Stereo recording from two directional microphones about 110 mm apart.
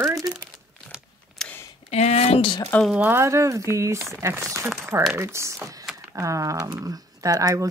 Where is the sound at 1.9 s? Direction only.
75° left (ahead or behind); by 2.5 s 60° left (ahead or behind).